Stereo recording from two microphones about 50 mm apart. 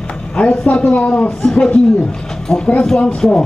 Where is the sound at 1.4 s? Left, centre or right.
Centre.